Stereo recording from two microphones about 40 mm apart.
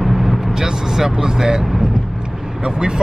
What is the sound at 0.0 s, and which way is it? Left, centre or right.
Vehicle, centre.